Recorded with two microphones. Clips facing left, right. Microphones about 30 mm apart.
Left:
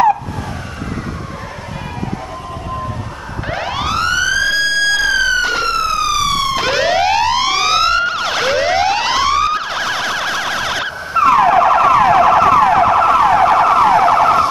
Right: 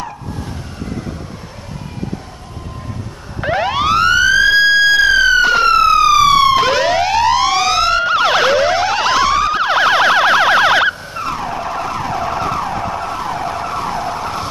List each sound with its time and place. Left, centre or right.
3.4 s police car: centre
5.7 s police car: centre
6.5 s police car: centre
8.1 s emergency vehicle: centre
8.5 s police car: centre
9.5 s emergency vehicle: centre
11.1 s car alarm: left